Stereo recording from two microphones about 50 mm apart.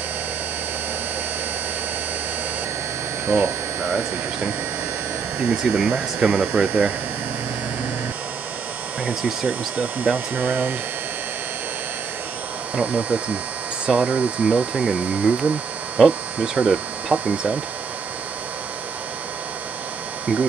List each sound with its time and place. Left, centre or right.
3.3 s speech: right
5.4 s speech: right
6.3 s speech: right
9.5 s speech: right
12.7 s speech: right